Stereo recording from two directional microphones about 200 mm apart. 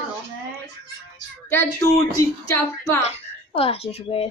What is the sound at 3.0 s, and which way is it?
Speech, 30° left (ahead or behind).